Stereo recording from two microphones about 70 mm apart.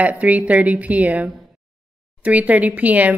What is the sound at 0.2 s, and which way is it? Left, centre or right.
Speech, centre.